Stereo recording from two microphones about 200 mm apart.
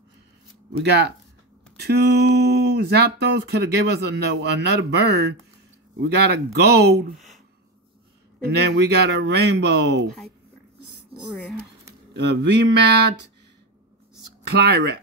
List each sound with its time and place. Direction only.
0.7 s speech: 55° right (ahead or behind)
7.2 s a sound: centre (ahead or behind)
8.4 s speech: 55° right (ahead or behind)
10.8 s a sound: 55° right (ahead or behind)
12.1 s speech: 60° right (ahead or behind)
14.6 s speech: 55° right (ahead or behind)